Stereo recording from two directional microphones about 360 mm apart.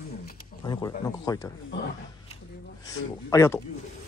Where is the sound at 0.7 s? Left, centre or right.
Centre.